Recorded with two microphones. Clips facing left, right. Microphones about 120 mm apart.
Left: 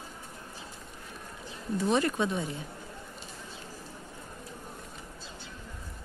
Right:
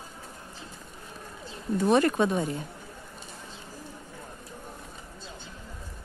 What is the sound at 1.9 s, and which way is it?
Speech, 55° right (ahead or behind).